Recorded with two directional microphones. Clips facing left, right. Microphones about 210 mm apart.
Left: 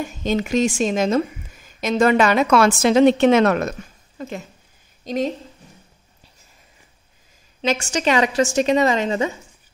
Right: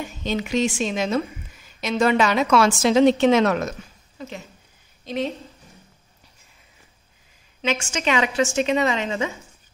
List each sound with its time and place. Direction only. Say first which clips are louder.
0.2 s a woman's voice: left 3 dB; 45° left (ahead or behind)
7.6 s a woman's voice: left 4 dB; 40° left (ahead or behind)